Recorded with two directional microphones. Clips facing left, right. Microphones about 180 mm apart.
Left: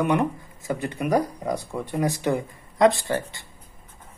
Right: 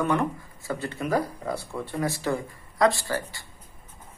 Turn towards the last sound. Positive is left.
turn(degrees=20)  # may be behind; listen again after turning